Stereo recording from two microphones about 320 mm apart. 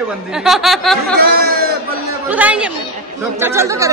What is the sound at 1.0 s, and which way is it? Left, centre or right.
Speech, right.